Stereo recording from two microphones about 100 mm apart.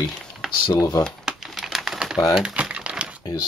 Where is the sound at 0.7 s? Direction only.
35° left (ahead or behind).